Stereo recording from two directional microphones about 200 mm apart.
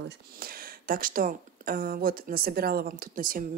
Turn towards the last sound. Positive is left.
turn(degrees=-45)  # may be behind; listen again after turning